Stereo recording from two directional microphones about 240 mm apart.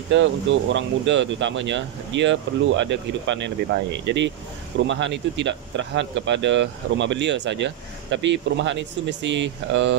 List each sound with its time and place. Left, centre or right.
0.1 s speech: right